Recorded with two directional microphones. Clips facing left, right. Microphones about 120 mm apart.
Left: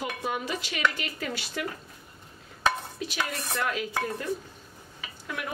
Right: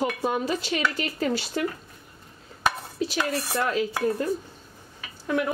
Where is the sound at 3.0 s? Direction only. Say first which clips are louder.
Right 8 dB; 35° right (ahead or behind).